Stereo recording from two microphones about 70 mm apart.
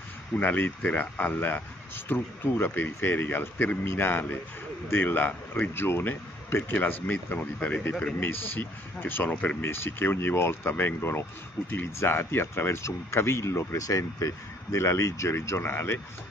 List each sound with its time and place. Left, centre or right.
0.4 s speech: left
9.6 s speech: left